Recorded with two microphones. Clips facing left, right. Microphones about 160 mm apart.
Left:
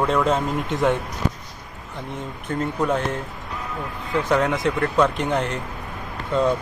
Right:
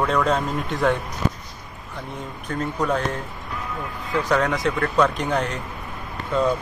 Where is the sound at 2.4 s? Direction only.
25° left (ahead or behind).